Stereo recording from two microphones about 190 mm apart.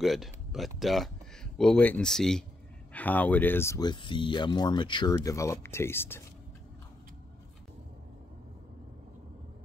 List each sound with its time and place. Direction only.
0.0 s speech: centre (ahead or behind)